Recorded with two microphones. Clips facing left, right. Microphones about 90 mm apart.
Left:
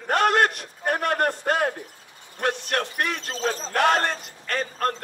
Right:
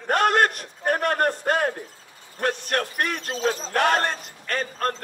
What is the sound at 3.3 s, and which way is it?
Speech, 40° left (ahead or behind).